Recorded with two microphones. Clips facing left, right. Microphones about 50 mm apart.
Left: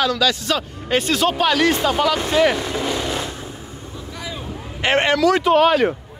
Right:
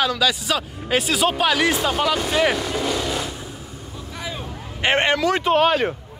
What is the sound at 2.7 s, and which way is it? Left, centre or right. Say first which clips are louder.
Vehicle: left 1 dB; left.